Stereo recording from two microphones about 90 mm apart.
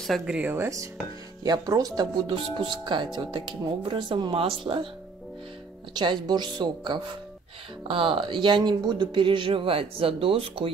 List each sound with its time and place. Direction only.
0.3 s speech: 20° right (ahead or behind)
1.4 s speech: 45° right (ahead or behind)
2.1 s speech: 70° right (ahead or behind); by 4.8 s 90° right
5.9 s a woman's voice: 55° right (ahead or behind)
7.9 s speech: 75° right (ahead or behind); by 10.7 s 90° right